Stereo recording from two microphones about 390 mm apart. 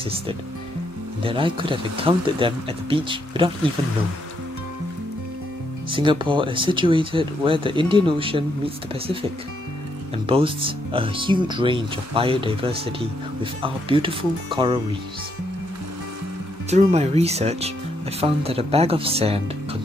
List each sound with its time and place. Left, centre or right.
1.2 s speech: centre
5.9 s speech: centre
10.2 s speech: centre
16.7 s speech: centre